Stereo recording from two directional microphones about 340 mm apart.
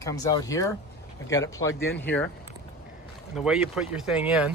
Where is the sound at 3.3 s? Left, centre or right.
Centre.